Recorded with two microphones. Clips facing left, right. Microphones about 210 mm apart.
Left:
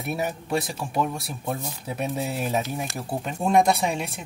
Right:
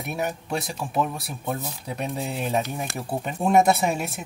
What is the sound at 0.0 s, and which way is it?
Speech, centre (ahead or behind).